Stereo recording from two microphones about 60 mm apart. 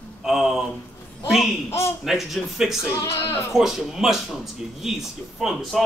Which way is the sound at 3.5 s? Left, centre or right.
Centre.